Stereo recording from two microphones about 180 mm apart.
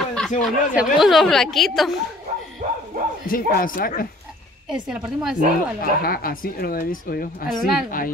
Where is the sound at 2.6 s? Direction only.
40° right (ahead or behind).